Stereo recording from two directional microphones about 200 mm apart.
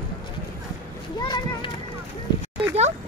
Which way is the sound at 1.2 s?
20° left (ahead or behind).